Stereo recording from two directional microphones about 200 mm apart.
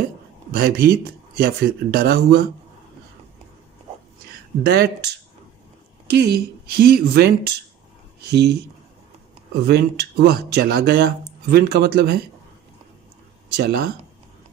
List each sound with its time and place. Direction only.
0.5 s speech: 50° right (ahead or behind)
4.6 s speech: 55° right (ahead or behind)
9.6 s speech: 55° right (ahead or behind)
13.6 s speech: 55° right (ahead or behind)